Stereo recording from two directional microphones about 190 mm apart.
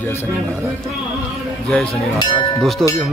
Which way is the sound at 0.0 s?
10° left (ahead or behind).